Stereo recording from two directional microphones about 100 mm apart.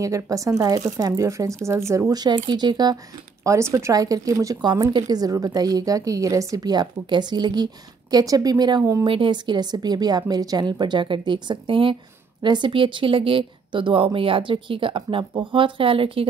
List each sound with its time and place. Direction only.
0.0 s a woman's voice: 35° right (ahead or behind)
2.1 s speech: 45° right (ahead or behind)
3.4 s a woman's voice: 30° right (ahead or behind); by 8.9 s 45° right (ahead or behind)
9.0 s speech: 60° right (ahead or behind)